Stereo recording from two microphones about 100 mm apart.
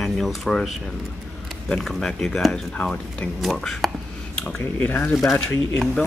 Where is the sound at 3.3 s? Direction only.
5° left (ahead or behind).